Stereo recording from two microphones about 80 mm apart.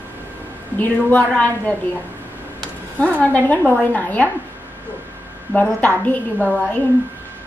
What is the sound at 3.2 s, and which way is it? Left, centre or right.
A woman's voice, centre.